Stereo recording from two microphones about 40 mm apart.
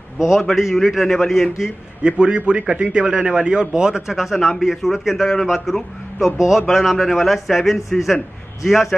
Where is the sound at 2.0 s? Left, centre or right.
Right.